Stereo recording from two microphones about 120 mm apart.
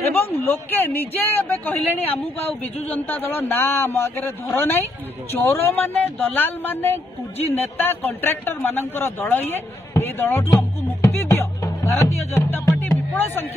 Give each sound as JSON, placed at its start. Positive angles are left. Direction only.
{"t": 0.0, "sound": "a man's voice", "side_deg": 20}